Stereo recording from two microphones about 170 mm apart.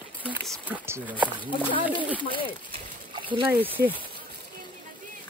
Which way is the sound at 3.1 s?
30° right (ahead or behind).